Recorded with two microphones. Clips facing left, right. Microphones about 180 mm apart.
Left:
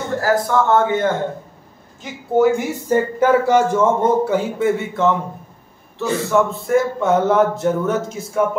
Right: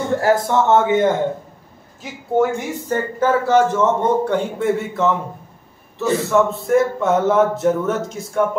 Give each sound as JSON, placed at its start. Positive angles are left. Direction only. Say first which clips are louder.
{"t": 0.2, "sound": "a man's voice", "louder": "left 1 dB", "side_deg": -20}
{"t": 2.3, "sound": "a man's voice", "louder": "left 3 dB", "side_deg": 10}